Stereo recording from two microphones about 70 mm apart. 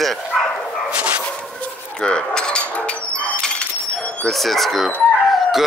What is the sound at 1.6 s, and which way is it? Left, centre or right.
Cutlery, centre.